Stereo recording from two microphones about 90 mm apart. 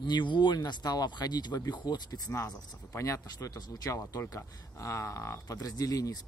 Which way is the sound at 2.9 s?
35° left (ahead or behind).